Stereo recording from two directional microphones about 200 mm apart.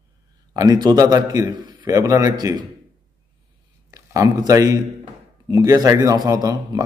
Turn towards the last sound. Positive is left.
turn(degrees=-20)  # may be behind; listen again after turning